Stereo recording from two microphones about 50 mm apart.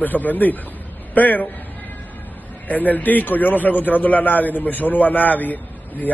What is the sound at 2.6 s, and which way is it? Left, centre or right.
A man's voice, left.